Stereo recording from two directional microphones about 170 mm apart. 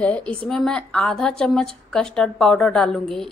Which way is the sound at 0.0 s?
5° left (ahead or behind).